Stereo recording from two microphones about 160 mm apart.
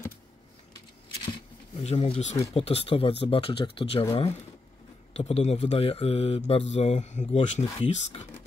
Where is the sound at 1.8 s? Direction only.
40° left (ahead or behind).